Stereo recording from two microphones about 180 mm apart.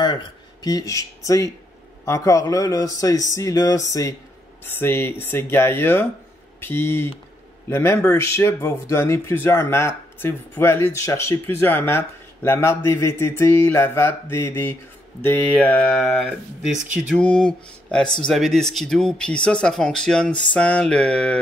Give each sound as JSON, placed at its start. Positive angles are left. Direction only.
{"t": 0.0, "sound": "speech", "side_deg": 25}
{"t": 16.3, "sound": "speech", "side_deg": -5}
{"t": 17.1, "sound": "speech", "side_deg": 5}